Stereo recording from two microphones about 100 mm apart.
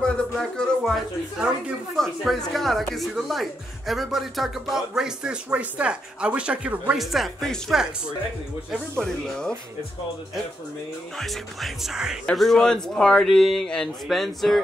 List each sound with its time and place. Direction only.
0.0 s a sound: centre (ahead or behind)
2.0 s speech: centre (ahead or behind)
7.0 s speech: centre (ahead or behind)
9.0 s speech: 5° left (ahead or behind)
11.1 s speech: centre (ahead or behind)